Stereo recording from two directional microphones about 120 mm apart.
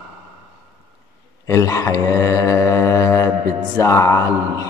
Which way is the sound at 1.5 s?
25° left (ahead or behind).